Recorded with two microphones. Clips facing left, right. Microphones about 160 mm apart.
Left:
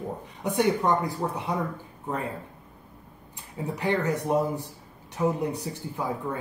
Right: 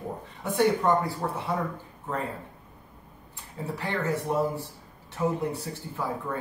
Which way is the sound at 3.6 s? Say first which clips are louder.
Left 4 dB; 20° left (ahead or behind).